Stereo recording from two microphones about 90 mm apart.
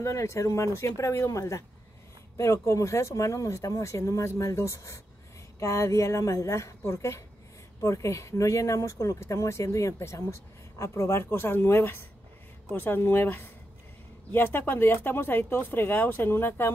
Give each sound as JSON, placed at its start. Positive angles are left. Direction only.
{"t": 0.0, "sound": "speech", "side_deg": 35}